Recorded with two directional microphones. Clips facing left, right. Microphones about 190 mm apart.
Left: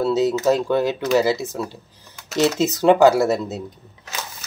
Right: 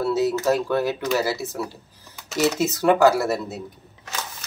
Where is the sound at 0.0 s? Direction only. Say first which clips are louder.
Left 3 dB; 20° left (ahead or behind).